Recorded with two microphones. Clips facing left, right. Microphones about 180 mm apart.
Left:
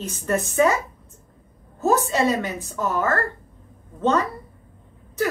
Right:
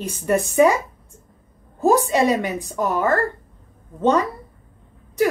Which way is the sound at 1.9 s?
15° right (ahead or behind).